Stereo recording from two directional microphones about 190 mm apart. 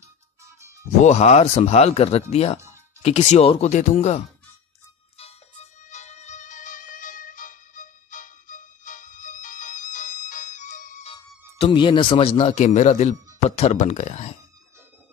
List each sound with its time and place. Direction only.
1.0 s speech: 35° left (ahead or behind)
5.1 s music: 35° left (ahead or behind)
13.4 s speech: 35° left (ahead or behind)